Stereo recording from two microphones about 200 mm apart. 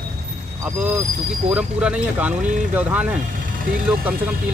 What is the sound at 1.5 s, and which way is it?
Speech, 5° right (ahead or behind).